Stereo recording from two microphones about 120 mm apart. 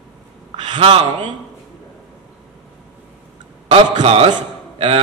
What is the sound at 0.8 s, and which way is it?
Speech, 45° right (ahead or behind).